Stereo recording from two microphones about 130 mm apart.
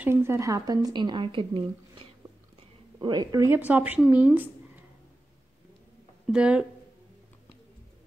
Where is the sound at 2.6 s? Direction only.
35° right (ahead or behind).